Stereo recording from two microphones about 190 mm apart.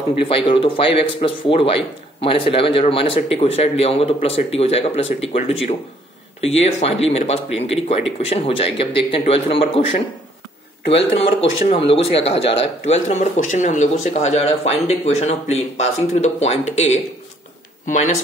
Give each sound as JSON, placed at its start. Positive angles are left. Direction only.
{"t": 0.2, "sound": "speech", "side_deg": 30}
{"t": 11.9, "sound": "speech", "side_deg": 30}